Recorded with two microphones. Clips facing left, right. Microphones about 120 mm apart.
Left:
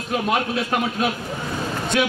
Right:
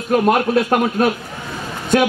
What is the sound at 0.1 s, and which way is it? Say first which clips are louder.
A man's voice: right 8 dB; 50° right (ahead or behind).